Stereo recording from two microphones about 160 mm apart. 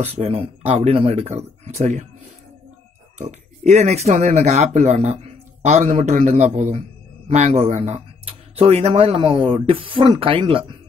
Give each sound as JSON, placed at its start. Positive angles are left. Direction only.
{"t": 0.0, "sound": "speech", "side_deg": -40}
{"t": 3.2, "sound": "speech", "side_deg": -45}